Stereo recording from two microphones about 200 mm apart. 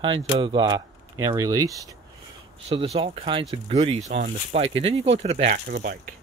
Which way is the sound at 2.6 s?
30° right (ahead or behind).